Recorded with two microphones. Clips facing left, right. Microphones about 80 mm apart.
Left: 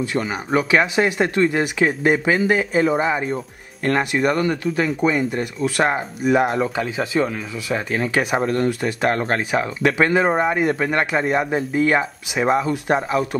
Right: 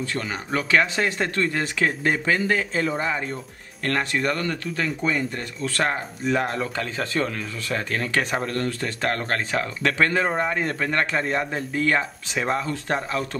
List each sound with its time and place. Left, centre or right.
0.0 s speech: centre